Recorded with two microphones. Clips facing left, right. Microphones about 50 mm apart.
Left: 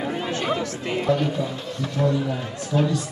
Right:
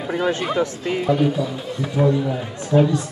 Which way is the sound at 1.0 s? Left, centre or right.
Centre.